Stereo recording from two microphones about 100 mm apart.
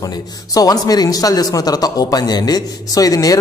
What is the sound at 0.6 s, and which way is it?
Speech, 40° left (ahead or behind).